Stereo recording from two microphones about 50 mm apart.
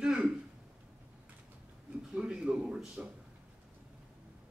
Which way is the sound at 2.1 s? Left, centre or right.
Centre.